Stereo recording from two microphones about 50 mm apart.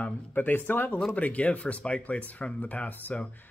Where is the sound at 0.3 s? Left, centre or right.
Left.